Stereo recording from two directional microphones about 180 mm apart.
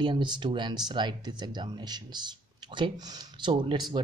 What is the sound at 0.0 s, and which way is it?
Speech, 25° right (ahead or behind).